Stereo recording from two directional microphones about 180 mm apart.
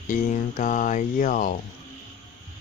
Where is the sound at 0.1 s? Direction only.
45° left (ahead or behind).